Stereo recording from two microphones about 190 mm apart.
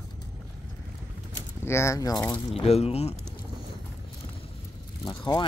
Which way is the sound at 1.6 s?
15° left (ahead or behind).